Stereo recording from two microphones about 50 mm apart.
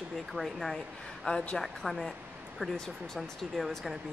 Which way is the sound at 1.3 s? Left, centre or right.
Left.